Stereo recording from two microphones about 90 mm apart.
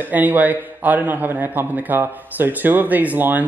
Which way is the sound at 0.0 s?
20° right (ahead or behind).